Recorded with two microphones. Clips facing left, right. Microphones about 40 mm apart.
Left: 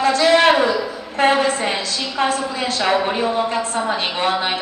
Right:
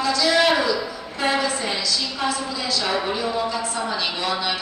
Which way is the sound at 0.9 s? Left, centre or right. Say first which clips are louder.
Left 6 dB; left.